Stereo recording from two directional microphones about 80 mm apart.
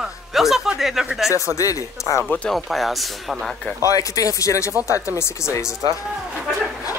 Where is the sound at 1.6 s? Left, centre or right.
Left.